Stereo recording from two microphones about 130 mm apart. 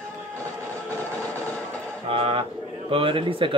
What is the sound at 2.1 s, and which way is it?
Bird, 50° right (ahead or behind).